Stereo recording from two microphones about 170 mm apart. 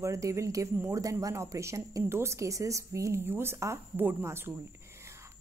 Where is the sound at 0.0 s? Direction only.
20° right (ahead or behind).